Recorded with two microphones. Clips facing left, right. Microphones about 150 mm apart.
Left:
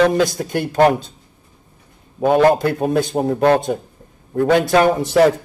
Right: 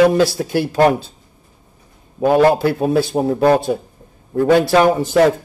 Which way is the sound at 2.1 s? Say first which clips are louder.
Right 1 dB; 5° right (ahead or behind).